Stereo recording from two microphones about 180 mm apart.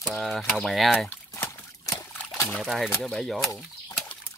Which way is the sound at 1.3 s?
15° left (ahead or behind).